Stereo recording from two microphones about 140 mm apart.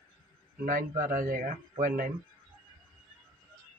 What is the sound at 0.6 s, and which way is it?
A man's voice, 75° right (ahead or behind).